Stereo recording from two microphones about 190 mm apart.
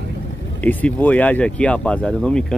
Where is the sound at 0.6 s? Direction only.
10° left (ahead or behind).